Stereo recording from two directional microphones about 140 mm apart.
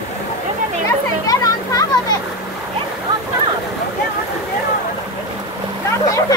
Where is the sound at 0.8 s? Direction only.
25° left (ahead or behind).